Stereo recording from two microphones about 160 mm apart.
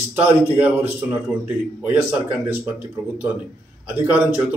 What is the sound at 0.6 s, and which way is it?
Speech, 15° right (ahead or behind).